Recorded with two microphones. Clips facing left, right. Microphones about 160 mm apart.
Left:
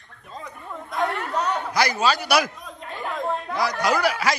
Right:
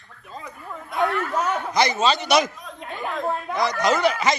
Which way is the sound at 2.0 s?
5° left (ahead or behind).